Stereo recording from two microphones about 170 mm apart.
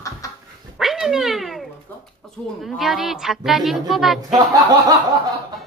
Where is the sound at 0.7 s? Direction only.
Centre (ahead or behind).